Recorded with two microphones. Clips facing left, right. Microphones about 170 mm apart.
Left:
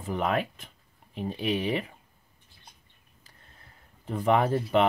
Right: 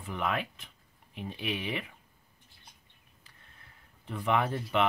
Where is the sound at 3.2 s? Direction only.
40° left (ahead or behind).